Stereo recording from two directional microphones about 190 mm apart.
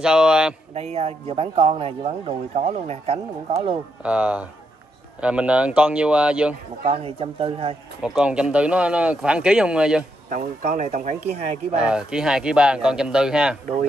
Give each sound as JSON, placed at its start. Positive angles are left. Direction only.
{"t": 0.0, "sound": "speech", "side_deg": -5}
{"t": 0.7, "sound": "a man's voice", "side_deg": -30}
{"t": 4.0, "sound": "speech", "side_deg": -5}
{"t": 6.9, "sound": "a man's voice", "side_deg": -30}
{"t": 8.0, "sound": "speech", "side_deg": -5}
{"t": 10.3, "sound": "a man's voice", "side_deg": -40}
{"t": 11.7, "sound": "speech", "side_deg": -5}